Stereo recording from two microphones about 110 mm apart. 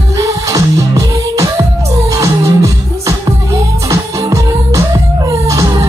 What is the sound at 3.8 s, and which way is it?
Music, 30° right (ahead or behind).